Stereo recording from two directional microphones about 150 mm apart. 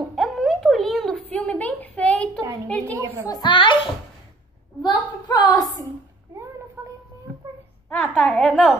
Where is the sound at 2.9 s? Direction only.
20° right (ahead or behind).